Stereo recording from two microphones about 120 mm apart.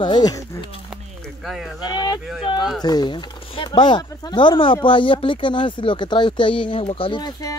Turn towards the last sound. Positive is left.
turn(degrees=35)  # may be behind; listen again after turning